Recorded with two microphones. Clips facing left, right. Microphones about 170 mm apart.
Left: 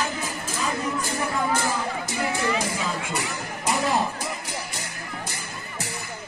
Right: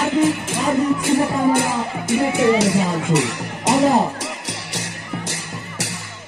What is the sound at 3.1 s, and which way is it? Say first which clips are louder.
Music: right 10 dB; 85° right.